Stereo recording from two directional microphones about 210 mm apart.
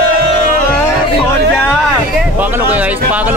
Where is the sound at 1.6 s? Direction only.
5° left (ahead or behind).